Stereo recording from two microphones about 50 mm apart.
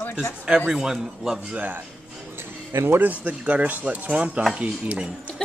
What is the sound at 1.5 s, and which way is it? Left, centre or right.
Speech, right.